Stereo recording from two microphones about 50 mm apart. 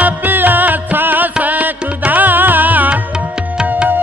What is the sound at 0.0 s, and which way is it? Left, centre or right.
Music, right.